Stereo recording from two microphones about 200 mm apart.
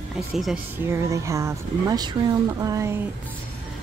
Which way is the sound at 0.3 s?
5° right (ahead or behind).